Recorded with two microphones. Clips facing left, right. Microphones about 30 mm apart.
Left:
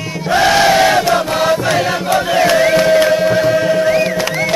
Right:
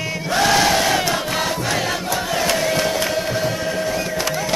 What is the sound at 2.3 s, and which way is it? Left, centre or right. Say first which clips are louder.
Chant: left 8 dB; left.